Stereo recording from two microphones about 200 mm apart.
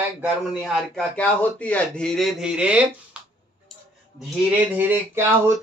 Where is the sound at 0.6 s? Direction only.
5° left (ahead or behind).